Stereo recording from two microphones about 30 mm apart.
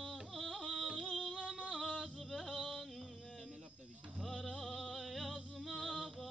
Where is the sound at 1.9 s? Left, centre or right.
Centre.